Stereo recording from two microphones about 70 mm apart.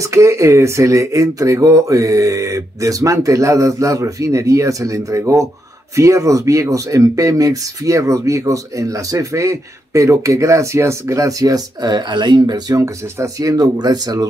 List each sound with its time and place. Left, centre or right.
0.0 s speech: right
12.8 s speech: right